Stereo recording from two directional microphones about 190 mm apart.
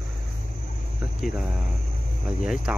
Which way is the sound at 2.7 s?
5° right (ahead or behind).